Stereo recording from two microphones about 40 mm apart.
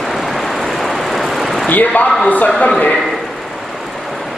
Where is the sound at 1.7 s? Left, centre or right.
Left.